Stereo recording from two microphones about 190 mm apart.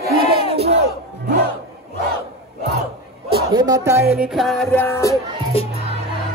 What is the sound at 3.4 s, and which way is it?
Speech, 20° right (ahead or behind).